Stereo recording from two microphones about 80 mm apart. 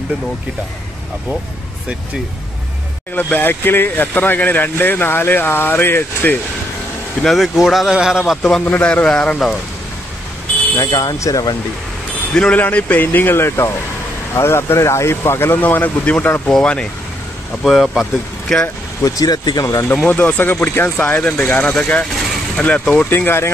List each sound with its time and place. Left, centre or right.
3.2 s speech: left
7.2 s speech: centre
8.4 s a man's voice: centre
8.6 s a man's voice: left
10.8 s speech: left
12.4 s a man's voice: centre
17.6 s speech: centre
19.0 s speech: left
19.6 s speech: left
20.1 s speech: centre
21.0 s a man's voice: centre
23.0 s speech: left